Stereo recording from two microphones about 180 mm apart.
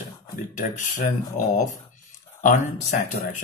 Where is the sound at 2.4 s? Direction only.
45° left (ahead or behind).